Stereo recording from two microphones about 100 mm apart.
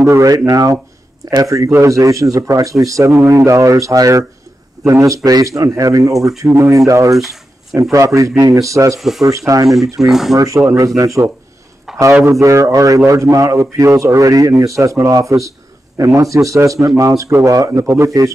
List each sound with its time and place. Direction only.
0.0 s a man's voice: 30° right (ahead or behind)
9.9 s speech: 5° right (ahead or behind)
10.3 s a man's voice: 35° right (ahead or behind)
11.9 s a sound: 5° right (ahead or behind)
12.3 s a man's voice: 30° right (ahead or behind)